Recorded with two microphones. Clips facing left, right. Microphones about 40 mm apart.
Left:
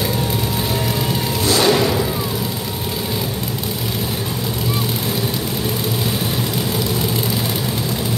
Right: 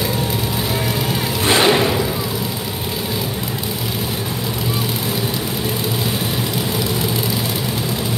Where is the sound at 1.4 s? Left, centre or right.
Right.